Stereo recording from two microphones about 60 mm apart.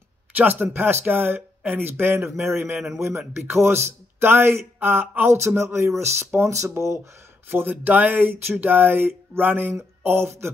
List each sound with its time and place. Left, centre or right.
0.3 s speech: right
4.7 s a sound: right
5.3 s speech: right
7.4 s speech: right